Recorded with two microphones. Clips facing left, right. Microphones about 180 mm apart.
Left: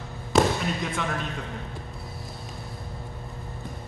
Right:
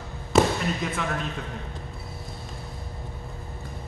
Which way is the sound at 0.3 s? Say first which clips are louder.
Right 1 dB; centre (ahead or behind).